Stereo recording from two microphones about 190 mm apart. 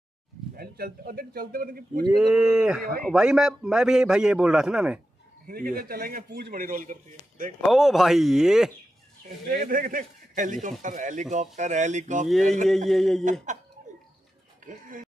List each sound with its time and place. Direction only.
0.6 s a man's voice: 50° right (ahead or behind)
2.1 s a man's voice: 5° right (ahead or behind)
5.5 s a man's voice: 50° right (ahead or behind)
7.6 s a man's voice: centre (ahead or behind)
9.5 s a man's voice: 45° right (ahead or behind)
12.6 s a man's voice: centre (ahead or behind)
13.2 s speech: 40° right (ahead or behind)
14.7 s speech: 45° right (ahead or behind)